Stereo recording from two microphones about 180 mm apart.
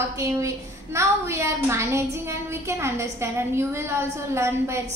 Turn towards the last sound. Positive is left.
turn(degrees=-15)  # may be behind; listen again after turning